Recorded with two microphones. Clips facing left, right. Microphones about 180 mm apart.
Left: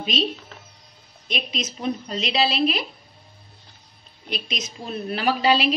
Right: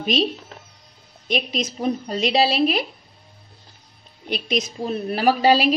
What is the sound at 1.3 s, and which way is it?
Speech, 45° right (ahead or behind).